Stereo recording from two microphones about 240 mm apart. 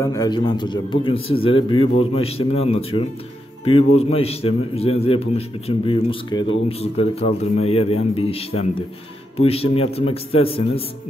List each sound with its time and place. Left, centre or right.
0.0 s a man's voice: centre